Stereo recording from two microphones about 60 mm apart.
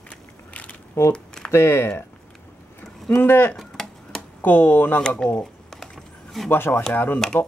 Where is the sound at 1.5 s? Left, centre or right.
Left.